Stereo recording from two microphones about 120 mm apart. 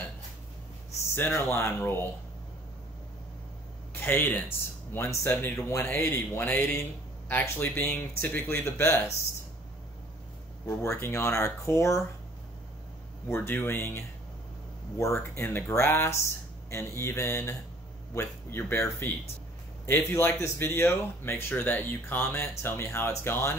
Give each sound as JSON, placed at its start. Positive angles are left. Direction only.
{"t": 1.1, "sound": "speech", "side_deg": 20}
{"t": 3.9, "sound": "speech", "side_deg": 15}
{"t": 10.7, "sound": "speech", "side_deg": 20}
{"t": 13.3, "sound": "speech", "side_deg": 20}